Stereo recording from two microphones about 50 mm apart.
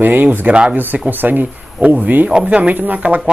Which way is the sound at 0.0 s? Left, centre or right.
Right.